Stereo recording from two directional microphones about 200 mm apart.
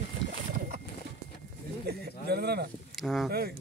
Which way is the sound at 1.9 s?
55° right (ahead or behind).